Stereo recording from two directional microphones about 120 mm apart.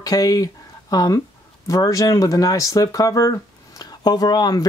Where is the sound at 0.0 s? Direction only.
30° left (ahead or behind).